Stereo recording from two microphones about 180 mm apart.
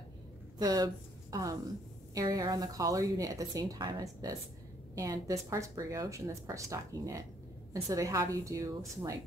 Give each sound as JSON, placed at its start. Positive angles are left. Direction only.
{"t": 0.6, "sound": "speech", "side_deg": -20}